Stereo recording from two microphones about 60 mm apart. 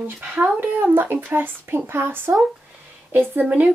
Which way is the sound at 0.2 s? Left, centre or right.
Right.